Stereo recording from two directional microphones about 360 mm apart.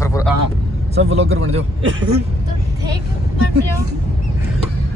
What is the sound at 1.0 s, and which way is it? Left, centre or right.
Speech, right.